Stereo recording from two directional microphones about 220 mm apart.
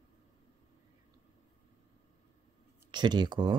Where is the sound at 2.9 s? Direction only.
20° right (ahead or behind).